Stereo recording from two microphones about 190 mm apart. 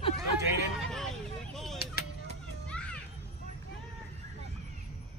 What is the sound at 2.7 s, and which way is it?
Children playing, 5° left (ahead or behind).